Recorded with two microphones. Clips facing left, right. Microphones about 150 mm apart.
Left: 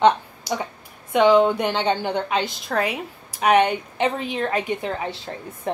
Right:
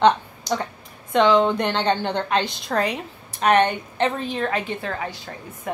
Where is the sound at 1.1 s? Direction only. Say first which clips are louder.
Left 1 dB; 10° left (ahead or behind).